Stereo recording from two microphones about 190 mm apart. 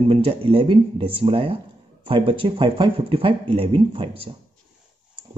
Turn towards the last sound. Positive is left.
turn(degrees=-30)  # may be behind; listen again after turning